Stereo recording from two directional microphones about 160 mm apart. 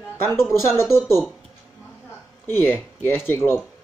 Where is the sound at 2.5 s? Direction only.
15° left (ahead or behind).